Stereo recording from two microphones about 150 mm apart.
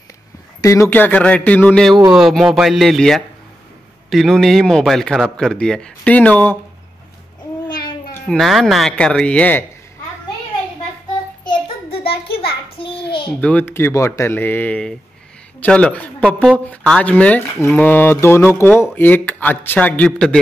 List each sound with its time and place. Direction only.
0.6 s a man's voice: 20° left (ahead or behind)
8.1 s a man's voice: 5° left (ahead or behind)
11.4 s child singing: 40° left (ahead or behind)
12.3 s a sound: 40° left (ahead or behind)
13.4 s speech: 10° left (ahead or behind)